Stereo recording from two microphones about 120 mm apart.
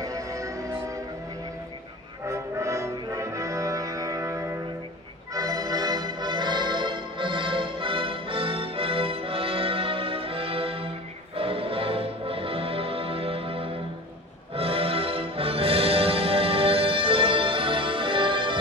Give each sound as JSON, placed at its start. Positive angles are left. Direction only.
{"t": 0.0, "sound": "music", "side_deg": -30}
{"t": 2.2, "sound": "music", "side_deg": -25}